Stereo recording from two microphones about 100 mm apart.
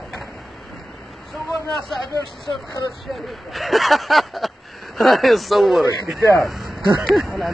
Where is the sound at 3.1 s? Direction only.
Centre (ahead or behind).